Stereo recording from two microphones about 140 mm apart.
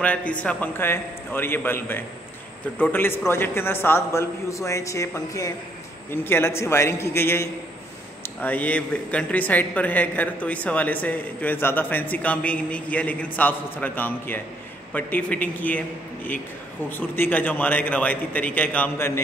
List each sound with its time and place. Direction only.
0.0 s a man's voice: 10° left (ahead or behind)
16.9 s speech: 15° left (ahead or behind)